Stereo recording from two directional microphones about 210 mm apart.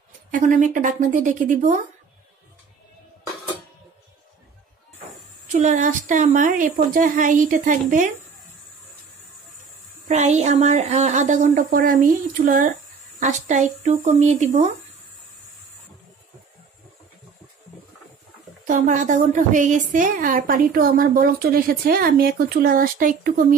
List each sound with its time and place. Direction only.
0.3 s a woman's voice: 40° right (ahead or behind)
5.5 s a woman's voice: 35° right (ahead or behind)
10.0 s a woman's voice: 35° right (ahead or behind)
18.7 s a woman's voice: 35° right (ahead or behind)